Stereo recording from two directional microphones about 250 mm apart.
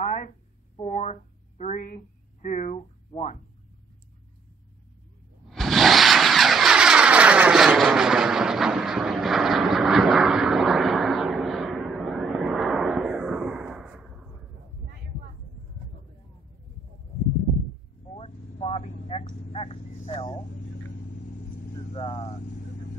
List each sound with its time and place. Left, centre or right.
0.0 s a sound: left
1.6 s speech: left
5.5 s vehicle: centre
18.1 s vehicle: left
21.9 s vehicle: centre